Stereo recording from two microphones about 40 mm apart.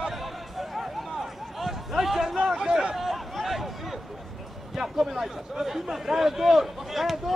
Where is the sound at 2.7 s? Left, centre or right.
Right.